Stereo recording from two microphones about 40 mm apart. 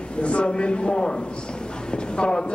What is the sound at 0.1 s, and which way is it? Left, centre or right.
A man's voice, left.